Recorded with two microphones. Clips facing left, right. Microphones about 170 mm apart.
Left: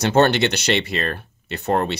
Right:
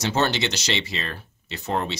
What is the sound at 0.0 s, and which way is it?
Speech, 60° left (ahead or behind).